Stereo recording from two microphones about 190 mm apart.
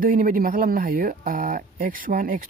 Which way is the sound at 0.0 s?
45° right (ahead or behind).